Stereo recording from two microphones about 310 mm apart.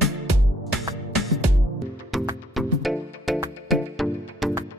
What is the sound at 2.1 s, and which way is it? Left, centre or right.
Music, centre.